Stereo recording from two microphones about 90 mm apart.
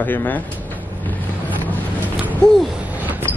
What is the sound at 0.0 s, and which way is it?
Speech, 20° left (ahead or behind).